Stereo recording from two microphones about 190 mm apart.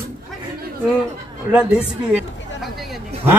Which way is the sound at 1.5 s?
5° right (ahead or behind).